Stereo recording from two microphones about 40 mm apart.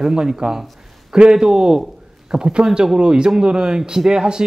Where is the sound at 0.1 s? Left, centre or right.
Centre.